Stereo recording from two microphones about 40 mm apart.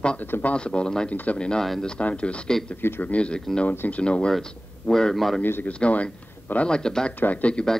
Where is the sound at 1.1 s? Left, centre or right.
Left.